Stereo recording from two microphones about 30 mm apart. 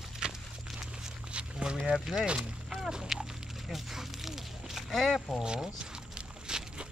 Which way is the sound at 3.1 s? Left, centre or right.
Centre.